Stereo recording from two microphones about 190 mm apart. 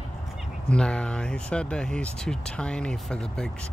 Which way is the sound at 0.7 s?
5° left (ahead or behind).